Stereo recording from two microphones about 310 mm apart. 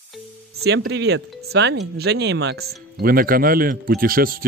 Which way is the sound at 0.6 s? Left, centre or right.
Right.